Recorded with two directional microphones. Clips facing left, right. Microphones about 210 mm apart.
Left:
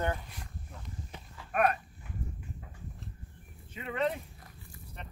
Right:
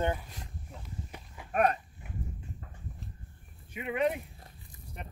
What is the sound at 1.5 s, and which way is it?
Speech, 30° right (ahead or behind).